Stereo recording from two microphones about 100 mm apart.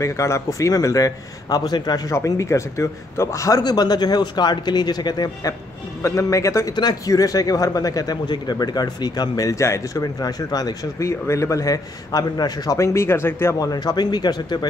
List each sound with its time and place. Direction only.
0.0 s speech: 30° left (ahead or behind)
6.0 s speech: 30° left (ahead or behind)
6.7 s speech: 45° left (ahead or behind); by 13.6 s 25° left (ahead or behind)
13.6 s a man's voice: 40° left (ahead or behind)